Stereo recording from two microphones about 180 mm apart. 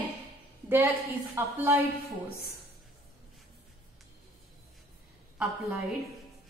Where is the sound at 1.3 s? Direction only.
10° right (ahead or behind).